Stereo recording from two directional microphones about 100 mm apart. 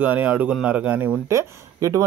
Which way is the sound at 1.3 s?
30° right (ahead or behind).